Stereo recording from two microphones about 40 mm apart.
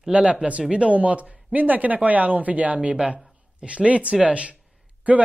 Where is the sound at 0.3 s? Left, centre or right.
Right.